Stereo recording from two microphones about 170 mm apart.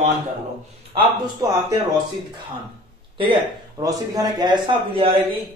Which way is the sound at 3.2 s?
30° right (ahead or behind).